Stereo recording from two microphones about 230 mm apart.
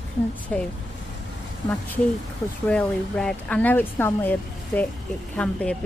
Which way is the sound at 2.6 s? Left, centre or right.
Centre.